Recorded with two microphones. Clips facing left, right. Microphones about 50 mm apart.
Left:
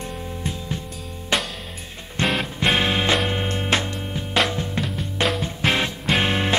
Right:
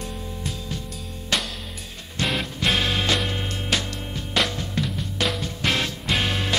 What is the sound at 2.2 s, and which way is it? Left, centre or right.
Music, left.